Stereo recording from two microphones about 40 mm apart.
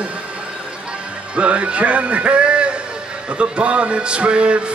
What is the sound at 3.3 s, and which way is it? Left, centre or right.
Music, right.